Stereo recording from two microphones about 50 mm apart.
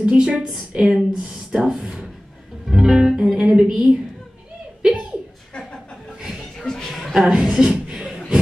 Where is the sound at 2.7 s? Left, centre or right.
Centre.